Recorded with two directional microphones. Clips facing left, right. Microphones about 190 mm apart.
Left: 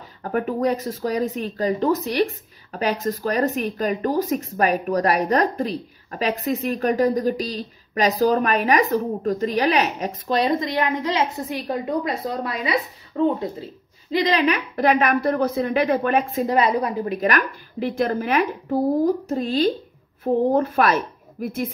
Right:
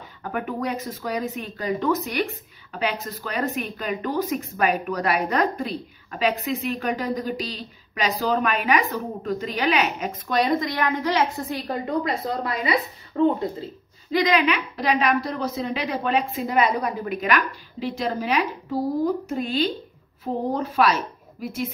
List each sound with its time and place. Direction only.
0.2 s speech: 40° left (ahead or behind); by 12.1 s 15° left (ahead or behind)
13.1 s speech: 5° right (ahead or behind)
14.1 s a woman's voice: 35° left (ahead or behind); by 16.3 s 55° left (ahead or behind)
16.4 s a woman's voice: 30° left (ahead or behind); by 19.1 s 50° left (ahead or behind)
19.2 s speech: 35° left (ahead or behind)
20.5 s speech: 50° left (ahead or behind)